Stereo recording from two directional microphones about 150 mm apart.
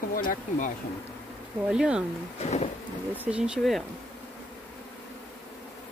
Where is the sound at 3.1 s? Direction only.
10° right (ahead or behind).